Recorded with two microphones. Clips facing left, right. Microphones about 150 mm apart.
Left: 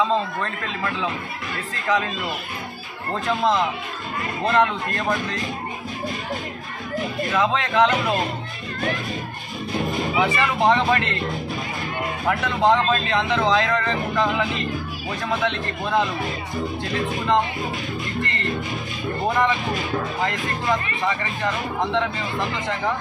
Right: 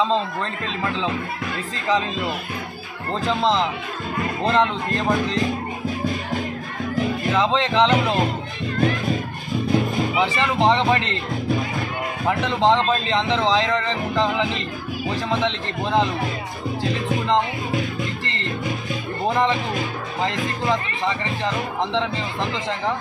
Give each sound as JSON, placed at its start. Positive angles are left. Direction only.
{"t": 3.3, "sound": "speech", "side_deg": -20}
{"t": 7.2, "sound": "speech", "side_deg": -20}
{"t": 10.1, "sound": "speech", "side_deg": -20}
{"t": 12.3, "sound": "speech", "side_deg": -20}
{"t": 19.2, "sound": "speech", "side_deg": -20}